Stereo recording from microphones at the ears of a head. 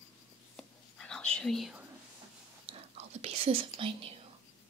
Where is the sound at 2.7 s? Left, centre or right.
Right.